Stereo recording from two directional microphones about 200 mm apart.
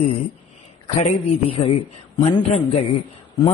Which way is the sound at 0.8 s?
35° left (ahead or behind).